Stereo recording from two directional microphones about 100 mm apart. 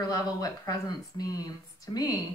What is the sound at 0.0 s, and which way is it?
Speech, 40° left (ahead or behind).